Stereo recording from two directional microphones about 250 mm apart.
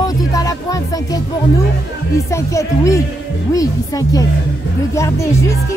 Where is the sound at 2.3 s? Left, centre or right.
Centre.